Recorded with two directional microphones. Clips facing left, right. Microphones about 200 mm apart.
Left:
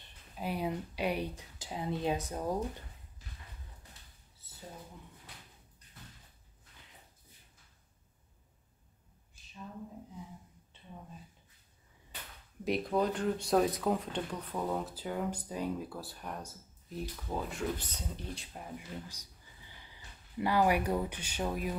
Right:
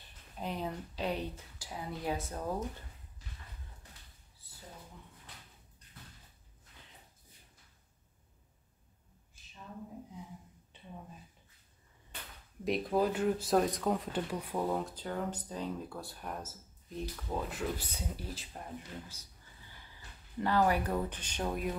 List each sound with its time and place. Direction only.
0.4 s speech: 10° left (ahead or behind)
10.7 s a sound: 15° right (ahead or behind)
12.6 s speech: centre (ahead or behind)
19.7 s speech: 15° left (ahead or behind)